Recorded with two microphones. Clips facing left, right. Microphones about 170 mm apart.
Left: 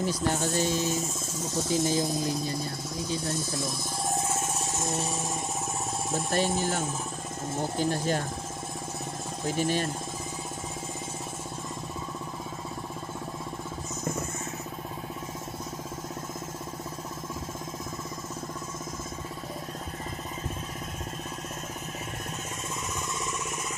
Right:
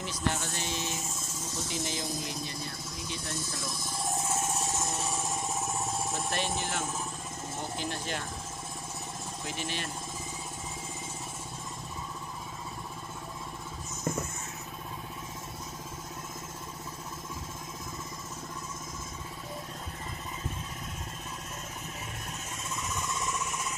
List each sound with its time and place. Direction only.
0.3 s speech: 40° left (ahead or behind)
6.3 s speech: 40° left (ahead or behind)
9.6 s speech: 45° left (ahead or behind)